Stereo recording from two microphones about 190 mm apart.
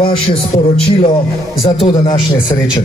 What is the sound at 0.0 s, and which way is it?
Speech, 30° left (ahead or behind).